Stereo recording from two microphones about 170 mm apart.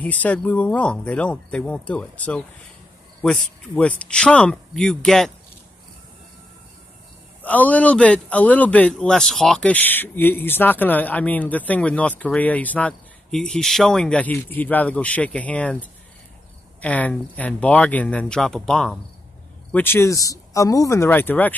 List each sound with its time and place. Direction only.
0.0 s speech: 10° left (ahead or behind)
7.4 s speech: 10° left (ahead or behind)